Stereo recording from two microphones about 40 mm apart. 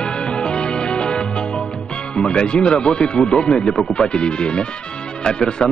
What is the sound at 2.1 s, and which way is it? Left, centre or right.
Speech, left.